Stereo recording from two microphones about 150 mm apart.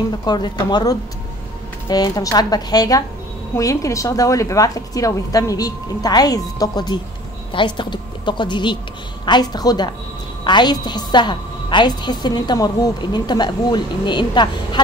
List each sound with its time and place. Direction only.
0.2 s a woman's voice: 30° left (ahead or behind)